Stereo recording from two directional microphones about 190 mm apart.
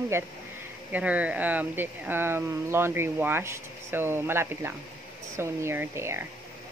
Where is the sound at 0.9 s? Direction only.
10° right (ahead or behind).